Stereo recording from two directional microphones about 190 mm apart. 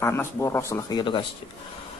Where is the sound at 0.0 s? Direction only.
15° left (ahead or behind).